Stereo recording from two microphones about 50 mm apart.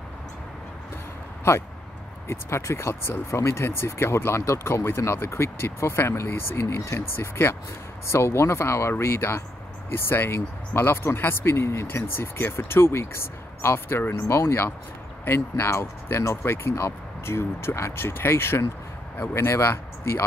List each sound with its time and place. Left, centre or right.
1.5 s speech: left
9.9 s speech: left